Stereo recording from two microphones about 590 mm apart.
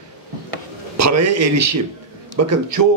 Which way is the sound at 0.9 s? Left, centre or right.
Right.